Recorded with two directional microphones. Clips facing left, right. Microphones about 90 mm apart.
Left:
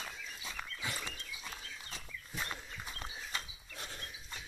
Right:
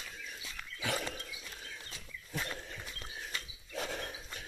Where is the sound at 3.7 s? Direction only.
90° right; by 4.5 s 65° right (ahead or behind).